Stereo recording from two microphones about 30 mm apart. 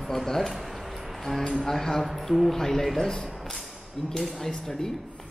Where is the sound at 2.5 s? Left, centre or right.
Centre.